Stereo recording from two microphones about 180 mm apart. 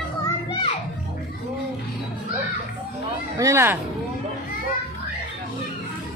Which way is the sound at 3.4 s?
15° right (ahead or behind).